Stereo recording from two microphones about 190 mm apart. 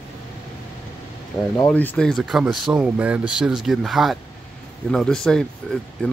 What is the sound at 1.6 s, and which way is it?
Speech, 5° left (ahead or behind).